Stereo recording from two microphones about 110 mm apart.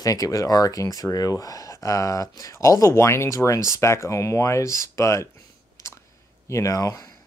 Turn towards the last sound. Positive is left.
turn(degrees=30)  # may be behind; listen again after turning